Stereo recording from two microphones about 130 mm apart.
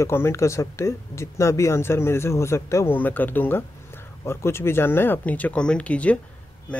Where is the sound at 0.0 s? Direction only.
20° left (ahead or behind).